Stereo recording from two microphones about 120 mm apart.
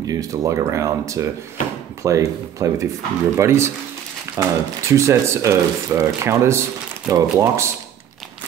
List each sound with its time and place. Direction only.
0.0 s speech: 30° right (ahead or behind)